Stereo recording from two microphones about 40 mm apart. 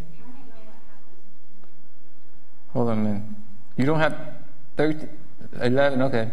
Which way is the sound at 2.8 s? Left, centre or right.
Left.